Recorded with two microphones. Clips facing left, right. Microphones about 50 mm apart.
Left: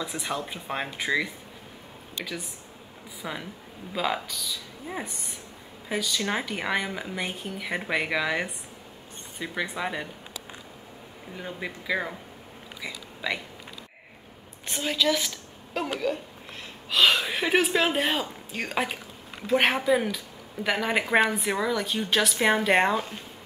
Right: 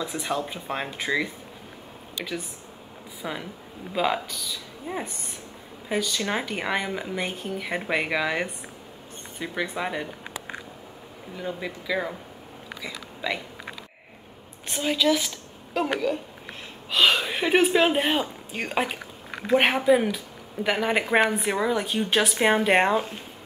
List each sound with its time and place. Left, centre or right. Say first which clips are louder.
0.0 s speech: right 3 dB; centre
3.2 s speech: right 2 dB; centre
6.0 s speech: right 1 dB; centre
11.3 s speech: right 3 dB; centre
14.7 s a woman's voice: right 3 dB; centre
16.9 s speech: right 1 dB; centre; by 23.2 s right